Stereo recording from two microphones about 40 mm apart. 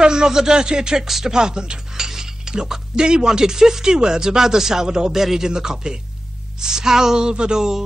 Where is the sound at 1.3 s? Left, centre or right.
Centre.